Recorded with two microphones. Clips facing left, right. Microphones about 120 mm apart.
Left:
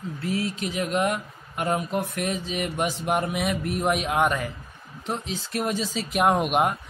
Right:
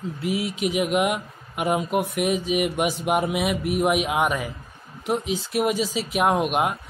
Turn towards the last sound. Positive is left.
turn(degrees=0)  # may be behind; listen again after turning